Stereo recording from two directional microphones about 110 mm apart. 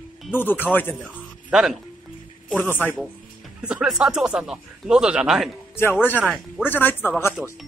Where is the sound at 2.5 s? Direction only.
20° left (ahead or behind).